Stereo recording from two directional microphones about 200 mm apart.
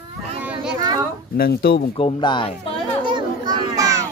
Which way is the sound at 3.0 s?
20° right (ahead or behind).